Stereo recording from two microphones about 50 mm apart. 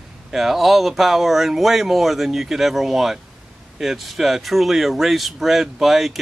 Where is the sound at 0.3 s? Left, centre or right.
Centre.